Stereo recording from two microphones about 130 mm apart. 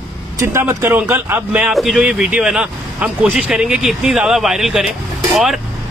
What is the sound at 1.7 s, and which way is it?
Speech, centre (ahead or behind).